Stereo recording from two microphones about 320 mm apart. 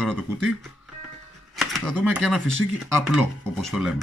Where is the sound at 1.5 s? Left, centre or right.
Centre.